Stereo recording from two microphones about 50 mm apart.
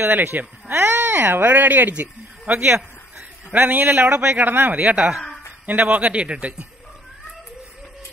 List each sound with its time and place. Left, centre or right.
0.0 s speech: right
4.1 s a man's voice: right
6.1 s speech: right